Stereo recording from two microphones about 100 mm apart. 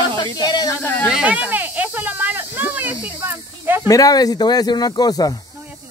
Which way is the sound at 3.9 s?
40° left (ahead or behind).